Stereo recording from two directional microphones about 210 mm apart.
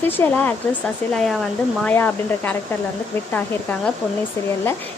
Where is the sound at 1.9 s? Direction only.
10° left (ahead or behind).